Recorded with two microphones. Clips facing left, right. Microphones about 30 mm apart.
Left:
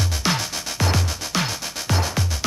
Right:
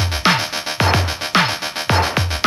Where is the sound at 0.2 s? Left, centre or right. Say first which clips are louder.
Right 9 dB; right.